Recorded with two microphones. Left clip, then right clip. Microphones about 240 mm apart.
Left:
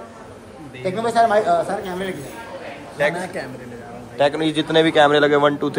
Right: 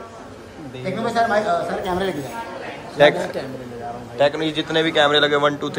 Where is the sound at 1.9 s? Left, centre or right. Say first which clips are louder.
Right 4 dB; right.